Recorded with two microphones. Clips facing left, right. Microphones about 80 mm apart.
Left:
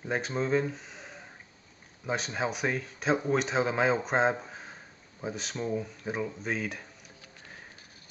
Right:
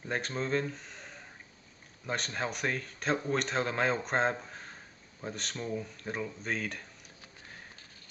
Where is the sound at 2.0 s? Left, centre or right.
Centre.